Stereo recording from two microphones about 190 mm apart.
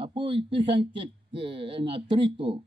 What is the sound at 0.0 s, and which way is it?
A man's voice, 25° right (ahead or behind).